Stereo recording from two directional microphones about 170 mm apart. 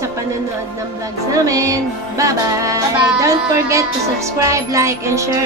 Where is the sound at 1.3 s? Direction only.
20° right (ahead or behind).